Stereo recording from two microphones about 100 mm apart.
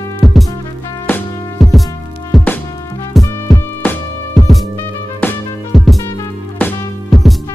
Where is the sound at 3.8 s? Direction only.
20° left (ahead or behind).